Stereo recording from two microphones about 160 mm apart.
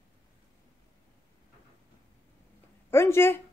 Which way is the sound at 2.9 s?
15° left (ahead or behind).